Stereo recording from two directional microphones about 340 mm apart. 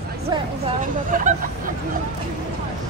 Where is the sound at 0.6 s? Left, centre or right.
Right.